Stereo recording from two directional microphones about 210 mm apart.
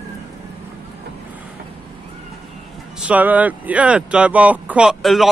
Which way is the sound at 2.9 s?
5° right (ahead or behind).